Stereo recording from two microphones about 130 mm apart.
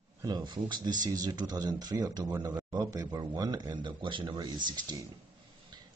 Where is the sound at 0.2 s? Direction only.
35° right (ahead or behind).